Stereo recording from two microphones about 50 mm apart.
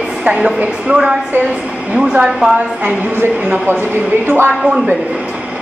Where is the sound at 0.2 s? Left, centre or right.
Centre.